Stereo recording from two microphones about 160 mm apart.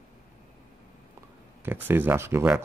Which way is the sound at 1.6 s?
15° right (ahead or behind).